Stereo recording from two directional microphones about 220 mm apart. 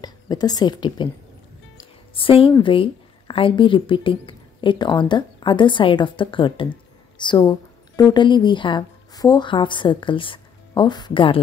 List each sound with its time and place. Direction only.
0.0 s a woman's voice: 20° left (ahead or behind)
2.1 s a woman's voice: 25° left (ahead or behind)